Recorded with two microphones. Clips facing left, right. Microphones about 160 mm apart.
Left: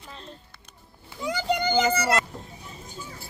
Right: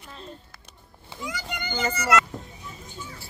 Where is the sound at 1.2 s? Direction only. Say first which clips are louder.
Left 9 dB; 30° left (ahead or behind).